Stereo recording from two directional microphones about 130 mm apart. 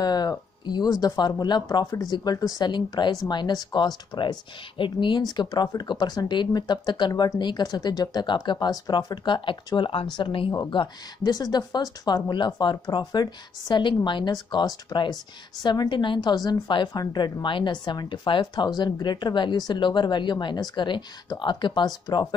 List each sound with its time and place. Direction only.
0.0 s speech: 30° left (ahead or behind)